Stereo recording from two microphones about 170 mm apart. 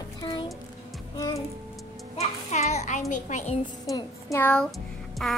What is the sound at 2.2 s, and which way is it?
A child's voice, 40° left (ahead or behind).